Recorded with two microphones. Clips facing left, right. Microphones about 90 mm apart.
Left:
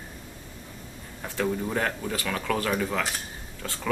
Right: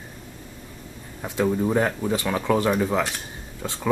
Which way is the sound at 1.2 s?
15° right (ahead or behind).